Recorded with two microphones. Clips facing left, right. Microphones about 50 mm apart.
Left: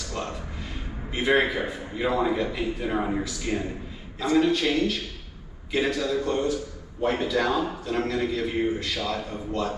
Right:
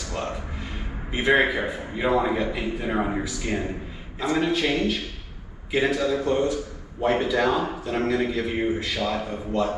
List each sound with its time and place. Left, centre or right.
0.1 s music: centre
1.1 s a man's voice: centre